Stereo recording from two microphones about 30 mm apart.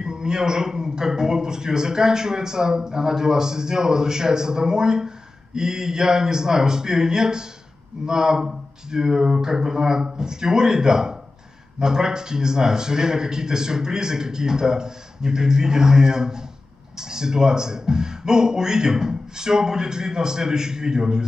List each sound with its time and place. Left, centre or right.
0.0 s speech: right